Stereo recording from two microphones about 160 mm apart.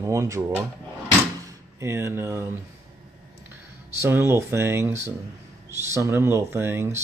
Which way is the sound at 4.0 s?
15° right (ahead or behind).